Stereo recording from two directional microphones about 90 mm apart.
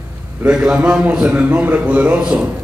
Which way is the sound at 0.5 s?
10° right (ahead or behind).